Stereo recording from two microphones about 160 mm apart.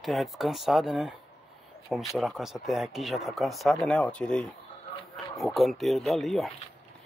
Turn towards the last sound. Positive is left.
turn(degrees=0)  # may be behind; listen again after turning